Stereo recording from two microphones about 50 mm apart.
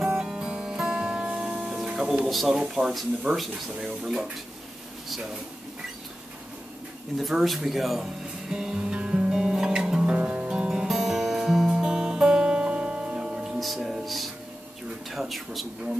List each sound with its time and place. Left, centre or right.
0.2 s music: centre
2.2 s speech: centre
2.5 s speech: centre
3.7 s speech: centre
7.2 s speech: centre
8.5 s music: centre
10.5 s music: centre
13.6 s music: centre
15.0 s speech: centre